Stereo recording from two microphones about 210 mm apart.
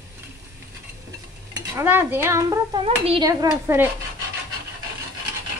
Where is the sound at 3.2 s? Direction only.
15° right (ahead or behind).